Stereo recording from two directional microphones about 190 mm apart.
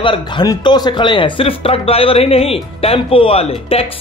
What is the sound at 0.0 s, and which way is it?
Speech, 25° left (ahead or behind).